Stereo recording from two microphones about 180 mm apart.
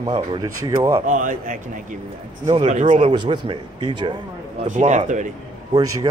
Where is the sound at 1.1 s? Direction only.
45° right (ahead or behind); by 4.1 s 25° right (ahead or behind).